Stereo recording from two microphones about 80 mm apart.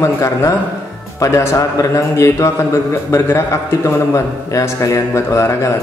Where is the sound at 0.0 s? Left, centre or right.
Left.